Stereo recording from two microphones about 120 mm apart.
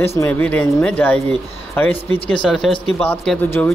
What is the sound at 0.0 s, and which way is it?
A man's voice, 20° left (ahead or behind).